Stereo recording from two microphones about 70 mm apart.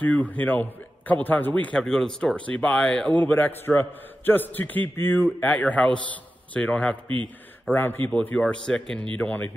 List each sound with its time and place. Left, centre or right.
0.0 s a man's voice: left
7.7 s a man's voice: left
8.4 s a man's voice: centre